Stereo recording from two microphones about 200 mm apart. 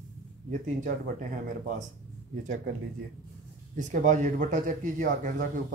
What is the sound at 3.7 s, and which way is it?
Speech, 40° right (ahead or behind).